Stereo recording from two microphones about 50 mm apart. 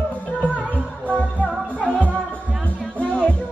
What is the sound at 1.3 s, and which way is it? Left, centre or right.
Music, left.